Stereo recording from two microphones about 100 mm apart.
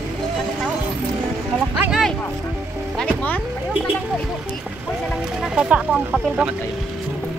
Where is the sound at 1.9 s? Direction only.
Centre (ahead or behind).